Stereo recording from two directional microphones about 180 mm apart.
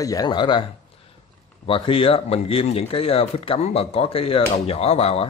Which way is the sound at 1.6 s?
30° left (ahead or behind).